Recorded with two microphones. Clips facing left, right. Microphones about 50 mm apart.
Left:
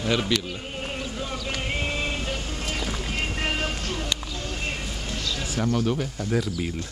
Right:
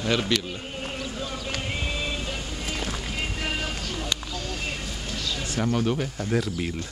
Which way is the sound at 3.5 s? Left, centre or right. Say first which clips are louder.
Left 2 dB; left.